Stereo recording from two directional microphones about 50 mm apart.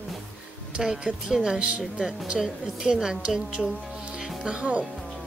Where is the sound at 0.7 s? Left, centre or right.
Centre.